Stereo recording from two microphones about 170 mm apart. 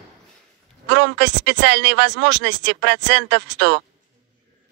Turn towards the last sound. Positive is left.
turn(degrees=-85)